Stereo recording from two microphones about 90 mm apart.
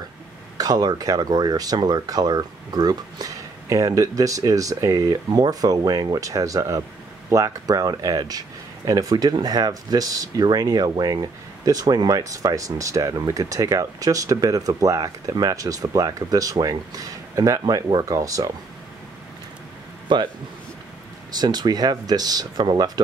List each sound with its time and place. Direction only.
0.6 s speech: 45° right (ahead or behind)
20.1 s a man's voice: 60° right (ahead or behind)
21.3 s speech: 50° right (ahead or behind)